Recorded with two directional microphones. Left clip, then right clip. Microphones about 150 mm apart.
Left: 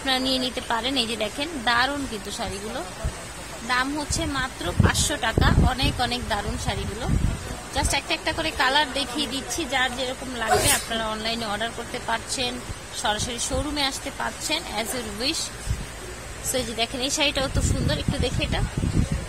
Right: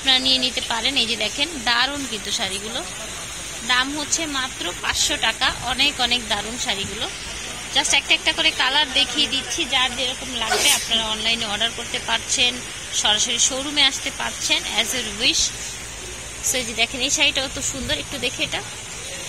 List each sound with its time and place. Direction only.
0.0 s speech: 25° left (ahead or behind)
1.7 s speech: 10° left (ahead or behind)
4.3 s speech: 20° left (ahead or behind)
10.4 s speech: 40° left (ahead or behind)
11.5 s speech: 20° left (ahead or behind)
16.5 s speech: 25° left (ahead or behind)